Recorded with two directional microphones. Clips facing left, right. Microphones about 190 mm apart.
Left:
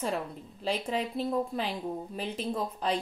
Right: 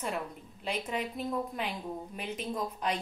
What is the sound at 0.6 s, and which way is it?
Speech, 30° left (ahead or behind).